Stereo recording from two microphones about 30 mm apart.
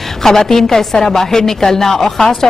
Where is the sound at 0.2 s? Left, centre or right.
Centre.